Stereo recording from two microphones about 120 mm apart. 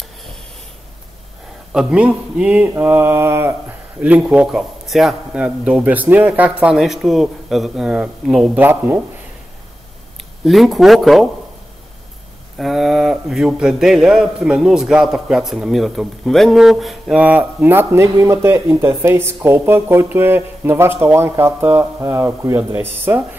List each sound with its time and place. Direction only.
1.7 s a man's voice: 5° right (ahead or behind)
8.5 s a man's voice: 15° right (ahead or behind)
10.4 s a man's voice: centre (ahead or behind)
12.5 s a man's voice: centre (ahead or behind)
17.2 s speech: 15° right (ahead or behind)